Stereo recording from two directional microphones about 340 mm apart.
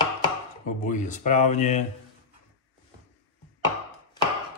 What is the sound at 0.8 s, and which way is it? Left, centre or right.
Speech, left.